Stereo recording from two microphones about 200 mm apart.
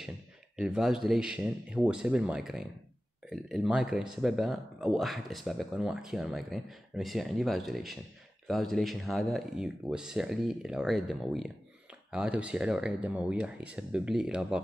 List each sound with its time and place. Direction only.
0.6 s speech: 5° right (ahead or behind)